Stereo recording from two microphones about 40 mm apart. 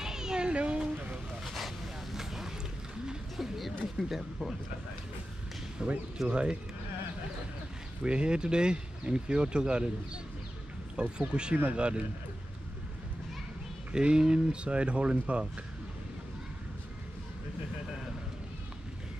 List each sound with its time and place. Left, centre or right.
0.0 s a sound: centre
1.4 s a sound: centre
2.1 s boat: centre
3.3 s a sound: centre
4.1 s speech: centre
5.8 s speech: right
8.0 s speech: right
11.0 s speech: right
13.9 s speech: right